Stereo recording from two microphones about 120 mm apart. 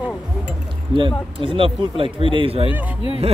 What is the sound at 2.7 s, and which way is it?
Speech, 10° right (ahead or behind).